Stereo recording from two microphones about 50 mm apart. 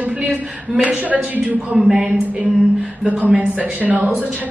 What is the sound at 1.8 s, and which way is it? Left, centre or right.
Speech, centre.